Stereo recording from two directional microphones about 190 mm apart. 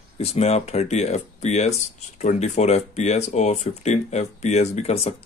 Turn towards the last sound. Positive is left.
turn(degrees=35)  # may be behind; listen again after turning